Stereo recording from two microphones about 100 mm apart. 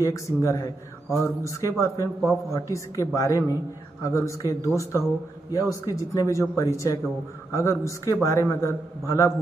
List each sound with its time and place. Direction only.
0.0 s a man's voice: 30° left (ahead or behind)